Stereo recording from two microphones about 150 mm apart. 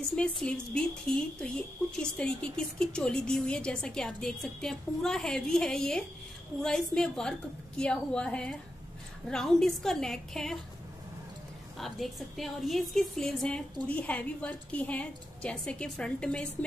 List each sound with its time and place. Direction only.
0.1 s a woman's voice: 5° left (ahead or behind)
11.8 s a woman's voice: centre (ahead or behind)